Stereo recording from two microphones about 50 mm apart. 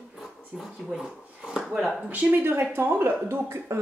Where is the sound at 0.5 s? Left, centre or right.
Centre.